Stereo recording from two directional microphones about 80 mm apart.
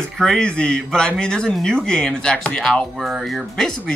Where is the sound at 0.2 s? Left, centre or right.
Centre.